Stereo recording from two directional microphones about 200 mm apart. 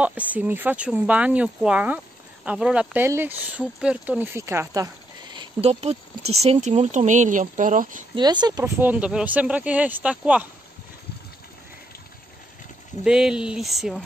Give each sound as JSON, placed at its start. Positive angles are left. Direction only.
{"t": 0.0, "sound": "speech", "side_deg": -5}
{"t": 8.2, "sound": "speech", "side_deg": -20}
{"t": 13.0, "sound": "speech", "side_deg": -5}